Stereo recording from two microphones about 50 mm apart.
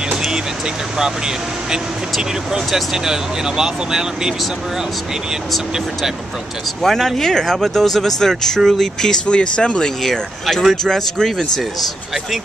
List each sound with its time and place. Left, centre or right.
0.9 s speech: centre
6.8 s speech: centre
9.2 s speech: centre
10.0 s speech: centre